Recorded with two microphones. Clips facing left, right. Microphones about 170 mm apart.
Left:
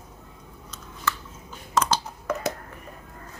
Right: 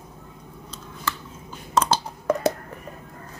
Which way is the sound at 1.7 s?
30° right (ahead or behind).